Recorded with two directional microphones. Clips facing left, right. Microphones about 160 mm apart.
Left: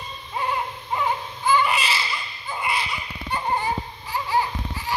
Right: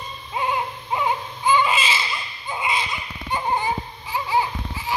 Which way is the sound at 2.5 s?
20° right (ahead or behind).